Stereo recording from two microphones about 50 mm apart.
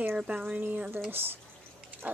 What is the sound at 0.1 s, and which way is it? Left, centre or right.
Speech, right.